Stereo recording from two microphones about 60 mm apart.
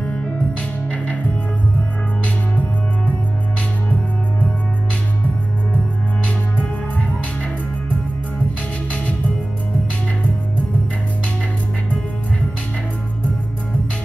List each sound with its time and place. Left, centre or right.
0.0 s music: left